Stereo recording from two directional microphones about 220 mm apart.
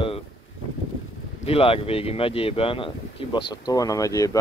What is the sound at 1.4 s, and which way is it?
Speech, 25° left (ahead or behind).